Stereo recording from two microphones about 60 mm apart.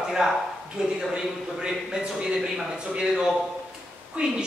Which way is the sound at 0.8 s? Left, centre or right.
Centre.